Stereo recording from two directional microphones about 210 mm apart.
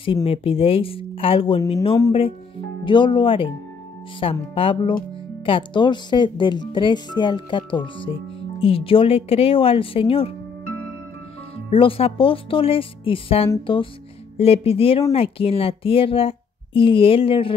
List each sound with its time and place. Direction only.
0.0 s speech: 25° left (ahead or behind)
11.5 s speech: 25° left (ahead or behind)